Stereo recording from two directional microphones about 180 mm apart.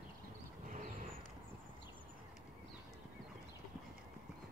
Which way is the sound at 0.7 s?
45° right (ahead or behind).